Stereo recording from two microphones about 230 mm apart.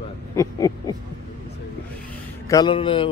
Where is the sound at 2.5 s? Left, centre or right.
Centre.